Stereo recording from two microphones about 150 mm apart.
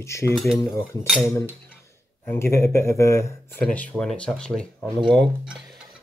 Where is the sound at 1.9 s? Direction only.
15° left (ahead or behind).